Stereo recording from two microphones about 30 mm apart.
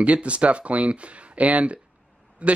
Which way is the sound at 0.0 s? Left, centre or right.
Right.